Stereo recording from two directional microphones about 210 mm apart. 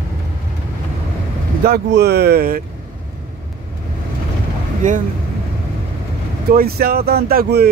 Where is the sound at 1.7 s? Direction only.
50° right (ahead or behind).